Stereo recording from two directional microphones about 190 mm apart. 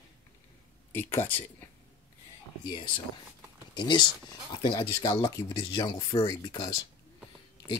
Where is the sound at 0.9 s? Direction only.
10° left (ahead or behind).